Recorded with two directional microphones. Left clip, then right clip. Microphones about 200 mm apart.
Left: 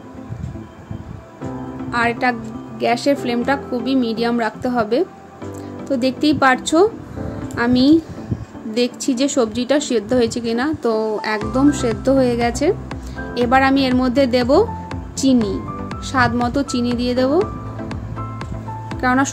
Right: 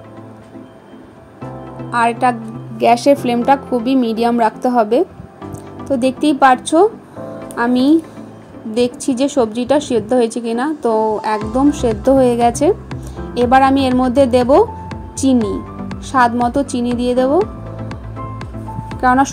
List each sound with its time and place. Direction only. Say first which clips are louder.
1.9 s speech: right 4 dB; 10° right (ahead or behind)
2.8 s a woman's voice: right 6 dB; 20° right (ahead or behind); by 17.9 s 5° right (ahead or behind)
18.9 s music: right 5 dB; 10° right (ahead or behind)